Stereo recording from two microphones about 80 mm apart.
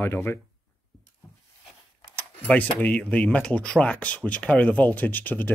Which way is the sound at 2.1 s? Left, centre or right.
Centre.